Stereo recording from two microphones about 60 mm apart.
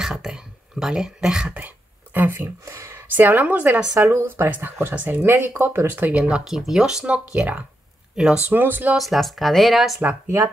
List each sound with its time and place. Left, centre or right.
0.0 s speech: centre
2.1 s speech: right
2.6 s speech: right
2.9 s speech: right
3.9 s speech: right
4.6 s speech: right; by 6.4 s centre
6.4 s speech: centre
7.3 s speech: right
8.9 s speech: centre